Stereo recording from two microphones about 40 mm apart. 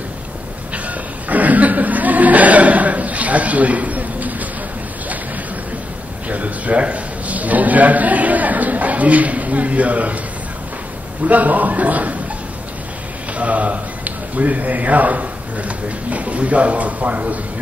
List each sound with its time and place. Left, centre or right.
0.8 s chuckle: right
6.2 s a sound: right
11.2 s speech: right
13.4 s a man's voice: right